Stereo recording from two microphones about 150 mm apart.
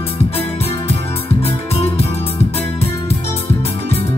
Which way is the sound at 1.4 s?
40° left (ahead or behind).